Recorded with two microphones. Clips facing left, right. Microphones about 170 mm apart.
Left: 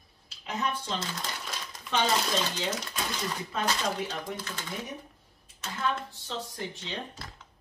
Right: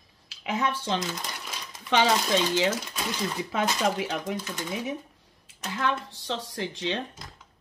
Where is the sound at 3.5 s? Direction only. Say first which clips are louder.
Right 4 dB; 90° right.